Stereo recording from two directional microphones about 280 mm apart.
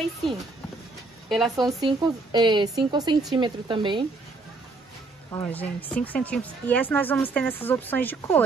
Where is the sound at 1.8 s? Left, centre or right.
Centre.